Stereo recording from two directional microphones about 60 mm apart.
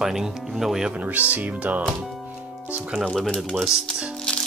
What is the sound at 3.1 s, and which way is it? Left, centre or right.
Speech, centre.